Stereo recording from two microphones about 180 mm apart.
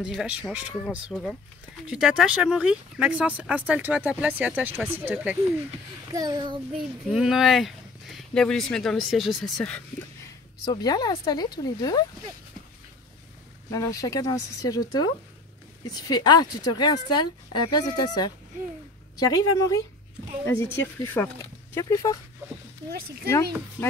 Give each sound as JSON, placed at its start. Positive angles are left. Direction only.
{"t": 0.0, "sound": "speech", "side_deg": -5}
{"t": 6.1, "sound": "a child's voice", "side_deg": -20}
{"t": 7.1, "sound": "speech", "side_deg": 0}
{"t": 10.6, "sound": "speech", "side_deg": 20}
{"t": 13.7, "sound": "speech", "side_deg": 20}